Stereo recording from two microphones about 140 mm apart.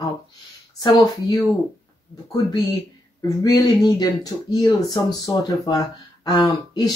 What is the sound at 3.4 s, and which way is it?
Speech, 25° left (ahead or behind).